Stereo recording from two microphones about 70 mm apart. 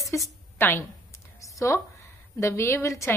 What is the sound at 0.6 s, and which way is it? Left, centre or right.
Speech, left.